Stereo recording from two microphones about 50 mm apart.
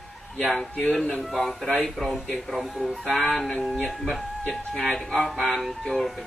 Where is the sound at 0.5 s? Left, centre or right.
Centre.